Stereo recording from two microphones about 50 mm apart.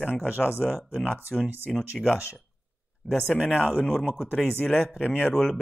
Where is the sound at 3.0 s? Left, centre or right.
Left.